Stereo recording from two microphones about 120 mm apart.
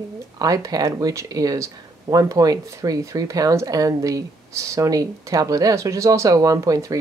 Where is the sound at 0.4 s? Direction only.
30° right (ahead or behind).